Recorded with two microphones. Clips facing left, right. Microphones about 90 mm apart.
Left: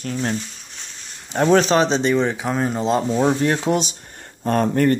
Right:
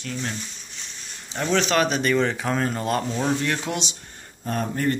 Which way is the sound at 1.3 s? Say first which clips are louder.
Left 8 dB; 45° left (ahead or behind).